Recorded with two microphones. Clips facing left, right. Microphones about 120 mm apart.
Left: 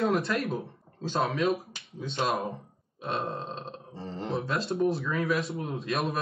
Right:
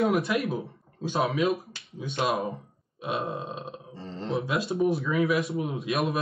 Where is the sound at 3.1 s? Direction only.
10° right (ahead or behind).